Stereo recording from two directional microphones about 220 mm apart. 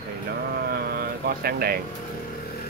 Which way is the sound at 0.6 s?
45° right (ahead or behind).